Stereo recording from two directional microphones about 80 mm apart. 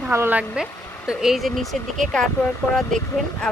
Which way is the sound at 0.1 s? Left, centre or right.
Right.